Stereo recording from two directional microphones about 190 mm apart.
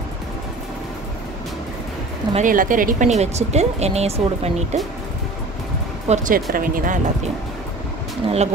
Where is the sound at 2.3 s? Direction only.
45° right (ahead or behind).